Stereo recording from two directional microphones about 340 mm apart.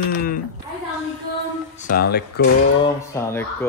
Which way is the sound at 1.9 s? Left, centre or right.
Left.